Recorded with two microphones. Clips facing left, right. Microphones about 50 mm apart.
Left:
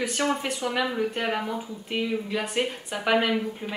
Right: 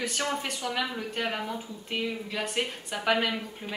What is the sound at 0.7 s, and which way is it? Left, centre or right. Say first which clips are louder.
Speech: left 5 dB; centre.